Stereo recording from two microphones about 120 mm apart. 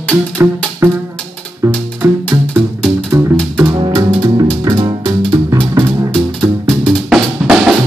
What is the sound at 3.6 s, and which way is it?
Music, 35° right (ahead or behind).